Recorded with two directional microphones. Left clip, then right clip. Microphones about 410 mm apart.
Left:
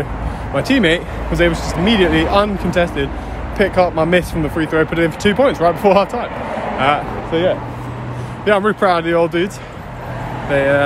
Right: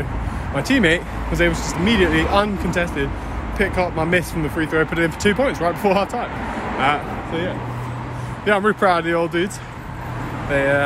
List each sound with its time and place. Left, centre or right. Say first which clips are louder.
0.6 s speech: left 3 dB; centre
10.5 s speech: left 4 dB; centre